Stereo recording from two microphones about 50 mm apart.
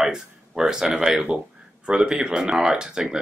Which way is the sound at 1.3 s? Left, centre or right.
Right.